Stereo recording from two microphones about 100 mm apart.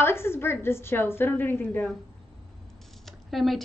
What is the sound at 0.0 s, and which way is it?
Speech, 25° left (ahead or behind).